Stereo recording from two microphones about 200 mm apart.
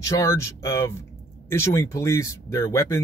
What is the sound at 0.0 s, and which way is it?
Speech, 15° left (ahead or behind).